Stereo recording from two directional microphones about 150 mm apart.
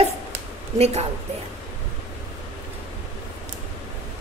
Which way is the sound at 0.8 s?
45° right (ahead or behind).